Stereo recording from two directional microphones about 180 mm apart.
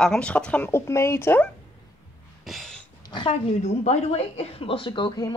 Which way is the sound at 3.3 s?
40° left (ahead or behind).